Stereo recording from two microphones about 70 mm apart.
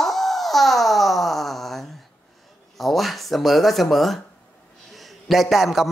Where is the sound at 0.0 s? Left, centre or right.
Centre.